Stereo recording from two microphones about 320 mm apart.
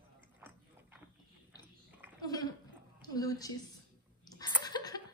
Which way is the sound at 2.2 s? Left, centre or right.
Centre.